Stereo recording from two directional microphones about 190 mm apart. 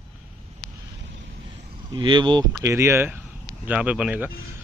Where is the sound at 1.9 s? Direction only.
25° right (ahead or behind).